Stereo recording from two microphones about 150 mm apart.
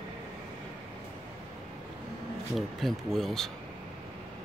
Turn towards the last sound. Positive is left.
turn(degrees=0)  # may be behind; listen again after turning